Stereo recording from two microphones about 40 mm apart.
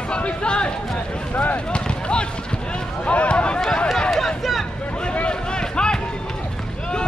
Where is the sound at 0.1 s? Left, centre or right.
Left.